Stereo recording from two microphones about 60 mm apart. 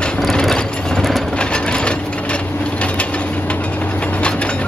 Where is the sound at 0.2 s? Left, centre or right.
Centre.